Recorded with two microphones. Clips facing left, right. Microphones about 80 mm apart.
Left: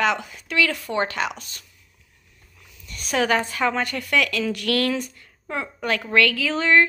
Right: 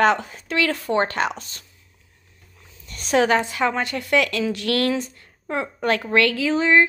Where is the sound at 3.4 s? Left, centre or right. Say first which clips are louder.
Right 1 dB; right.